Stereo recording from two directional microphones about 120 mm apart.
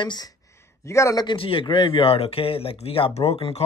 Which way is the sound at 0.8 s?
25° left (ahead or behind).